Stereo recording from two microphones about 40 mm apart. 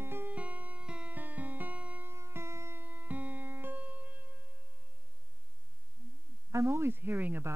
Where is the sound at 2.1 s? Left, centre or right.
Right.